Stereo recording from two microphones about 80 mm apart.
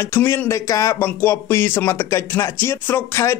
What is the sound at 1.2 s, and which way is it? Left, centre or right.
Speech, left.